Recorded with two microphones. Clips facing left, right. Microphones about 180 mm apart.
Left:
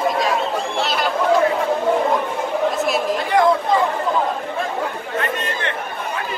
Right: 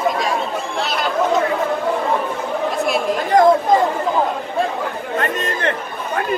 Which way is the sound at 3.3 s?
45° right (ahead or behind).